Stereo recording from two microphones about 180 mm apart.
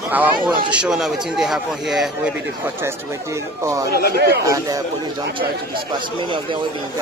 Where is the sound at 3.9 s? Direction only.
60° left (ahead or behind).